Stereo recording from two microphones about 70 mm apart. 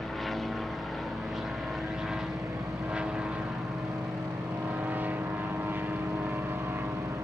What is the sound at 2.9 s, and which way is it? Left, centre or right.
Vehicle, centre.